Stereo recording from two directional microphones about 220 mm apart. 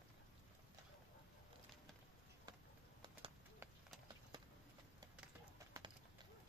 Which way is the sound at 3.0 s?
20° right (ahead or behind).